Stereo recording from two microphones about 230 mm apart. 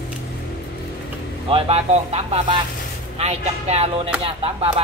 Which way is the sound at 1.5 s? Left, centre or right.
Right.